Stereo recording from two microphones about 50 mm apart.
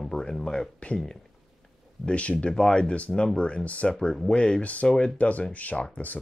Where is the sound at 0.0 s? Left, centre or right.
Centre.